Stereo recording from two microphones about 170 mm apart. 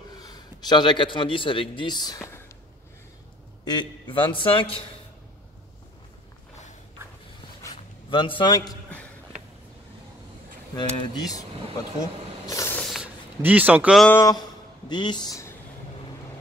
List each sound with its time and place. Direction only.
0.2 s a man's voice: 25° left (ahead or behind)
3.6 s a man's voice: 25° left (ahead or behind)
7.6 s a sound: 30° left (ahead or behind)
10.8 s a man's voice: 20° left (ahead or behind)
12.4 s spray: 15° left (ahead or behind)
12.8 s a sound: centre (ahead or behind)
13.4 s speech: 10° right (ahead or behind)
14.0 s a man's voice: 15° left (ahead or behind)